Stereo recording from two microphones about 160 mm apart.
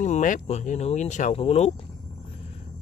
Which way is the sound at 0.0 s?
50° left (ahead or behind).